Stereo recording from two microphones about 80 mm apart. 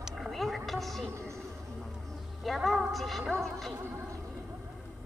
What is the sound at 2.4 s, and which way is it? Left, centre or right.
Speech, centre.